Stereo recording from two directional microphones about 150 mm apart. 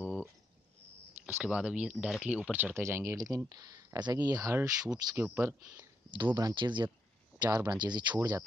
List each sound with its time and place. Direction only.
0.0 s cricket: 15° left (ahead or behind)
1.2 s speech: 10° right (ahead or behind)
6.3 s speech: 30° right (ahead or behind)
8.2 s speech: 15° right (ahead or behind)